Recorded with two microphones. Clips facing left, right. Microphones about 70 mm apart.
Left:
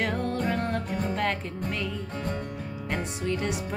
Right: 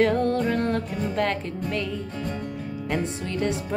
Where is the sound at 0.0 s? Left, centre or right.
Centre.